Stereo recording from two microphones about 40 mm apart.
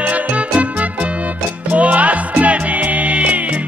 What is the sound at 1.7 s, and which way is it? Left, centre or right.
Music, right.